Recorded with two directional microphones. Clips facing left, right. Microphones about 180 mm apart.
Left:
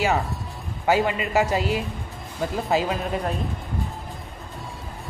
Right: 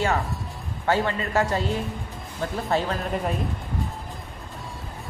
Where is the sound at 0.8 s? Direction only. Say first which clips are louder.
Left 2 dB; 10° left (ahead or behind).